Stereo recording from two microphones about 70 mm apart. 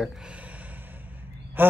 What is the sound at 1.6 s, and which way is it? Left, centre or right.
Speech, right.